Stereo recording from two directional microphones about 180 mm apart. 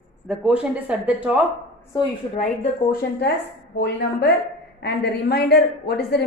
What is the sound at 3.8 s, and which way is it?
A woman's voice, 70° left (ahead or behind).